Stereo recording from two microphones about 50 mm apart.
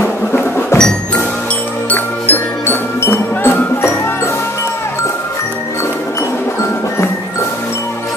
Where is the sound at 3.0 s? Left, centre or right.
Left.